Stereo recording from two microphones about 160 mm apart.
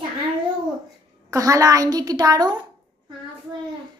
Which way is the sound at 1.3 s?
20° right (ahead or behind).